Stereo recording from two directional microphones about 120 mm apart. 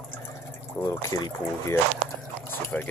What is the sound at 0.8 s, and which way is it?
Speech, 30° left (ahead or behind).